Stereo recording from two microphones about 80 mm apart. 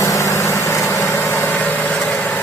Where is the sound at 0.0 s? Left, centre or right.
Left; by 2.1 s centre.